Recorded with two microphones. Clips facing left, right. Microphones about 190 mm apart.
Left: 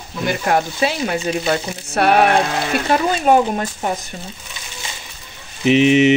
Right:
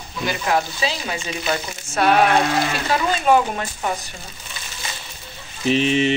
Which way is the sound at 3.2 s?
40° left (ahead or behind).